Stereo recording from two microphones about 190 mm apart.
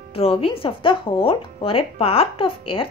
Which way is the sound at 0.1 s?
30° left (ahead or behind).